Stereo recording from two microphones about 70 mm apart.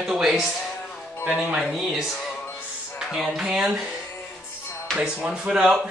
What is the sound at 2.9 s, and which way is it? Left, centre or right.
Speech, centre.